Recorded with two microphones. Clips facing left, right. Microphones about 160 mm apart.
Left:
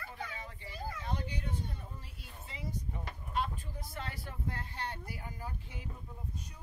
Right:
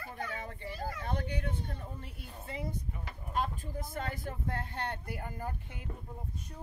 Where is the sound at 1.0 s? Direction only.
55° right (ahead or behind).